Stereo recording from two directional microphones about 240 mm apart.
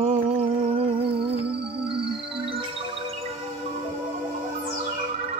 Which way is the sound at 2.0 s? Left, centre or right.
Right.